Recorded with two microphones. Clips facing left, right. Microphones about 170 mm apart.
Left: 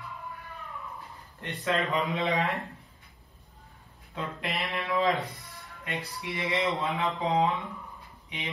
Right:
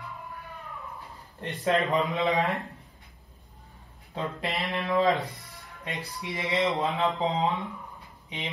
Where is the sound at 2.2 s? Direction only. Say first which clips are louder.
Right 2 dB; centre (ahead or behind).